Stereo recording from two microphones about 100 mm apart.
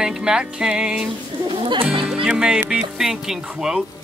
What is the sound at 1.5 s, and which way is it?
Speech, 60° right (ahead or behind).